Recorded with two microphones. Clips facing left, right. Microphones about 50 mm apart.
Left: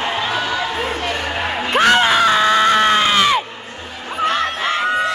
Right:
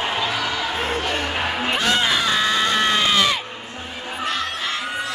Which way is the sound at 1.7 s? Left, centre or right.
Left.